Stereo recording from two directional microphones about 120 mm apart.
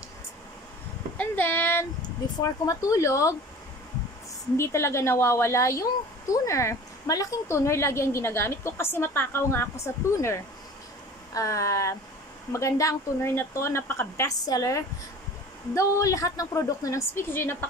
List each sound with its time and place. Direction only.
1.1 s a sound: 15° left (ahead or behind)
2.6 s speech: 30° left (ahead or behind)
4.6 s speech: 20° left (ahead or behind)